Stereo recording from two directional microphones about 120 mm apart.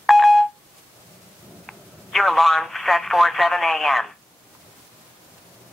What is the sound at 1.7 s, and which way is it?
Speech, centre (ahead or behind).